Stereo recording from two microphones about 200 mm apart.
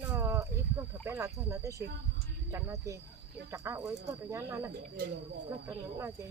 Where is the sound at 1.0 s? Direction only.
15° right (ahead or behind).